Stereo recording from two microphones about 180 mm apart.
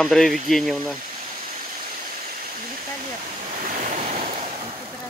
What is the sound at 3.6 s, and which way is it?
Waves, 45° right (ahead or behind).